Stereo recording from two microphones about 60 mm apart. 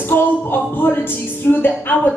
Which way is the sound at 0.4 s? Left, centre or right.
Left.